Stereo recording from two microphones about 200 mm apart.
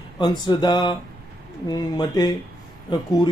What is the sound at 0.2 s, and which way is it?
Speech, 20° left (ahead or behind).